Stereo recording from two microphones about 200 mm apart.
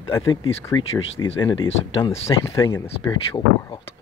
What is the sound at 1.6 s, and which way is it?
Speech, 75° left (ahead or behind).